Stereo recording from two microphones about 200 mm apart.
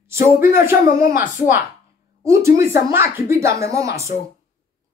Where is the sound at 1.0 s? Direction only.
45° left (ahead or behind).